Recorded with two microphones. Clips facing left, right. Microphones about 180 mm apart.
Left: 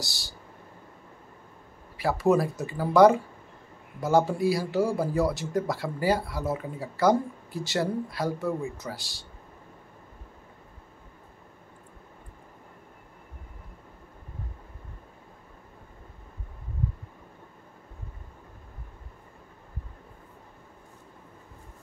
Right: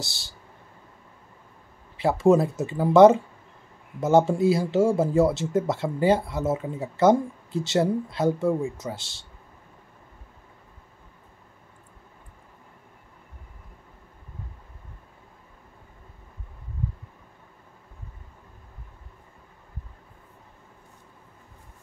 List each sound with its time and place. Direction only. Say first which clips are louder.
0.0 s speech: right 1 dB; 20° right (ahead or behind)
2.0 s speech: right 4 dB; 25° right (ahead or behind)